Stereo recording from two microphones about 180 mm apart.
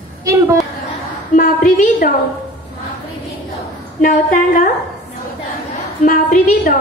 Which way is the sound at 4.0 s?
50° left (ahead or behind).